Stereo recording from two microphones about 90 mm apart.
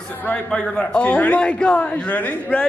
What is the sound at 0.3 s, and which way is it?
A woman's voice, 15° left (ahead or behind).